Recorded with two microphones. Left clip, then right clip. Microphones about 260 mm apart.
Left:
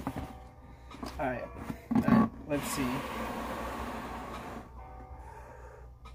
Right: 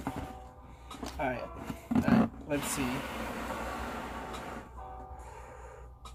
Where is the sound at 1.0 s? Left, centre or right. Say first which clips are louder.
Even; centre.